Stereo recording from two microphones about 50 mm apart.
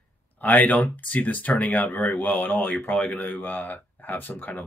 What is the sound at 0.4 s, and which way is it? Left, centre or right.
Speech, left.